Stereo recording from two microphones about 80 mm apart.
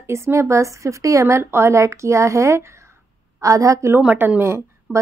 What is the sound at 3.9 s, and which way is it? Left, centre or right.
A woman's voice, right.